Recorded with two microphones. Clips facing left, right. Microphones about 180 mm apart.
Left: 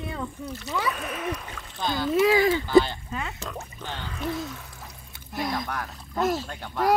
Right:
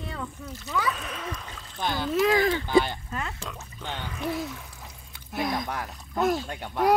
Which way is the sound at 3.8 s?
15° right (ahead or behind).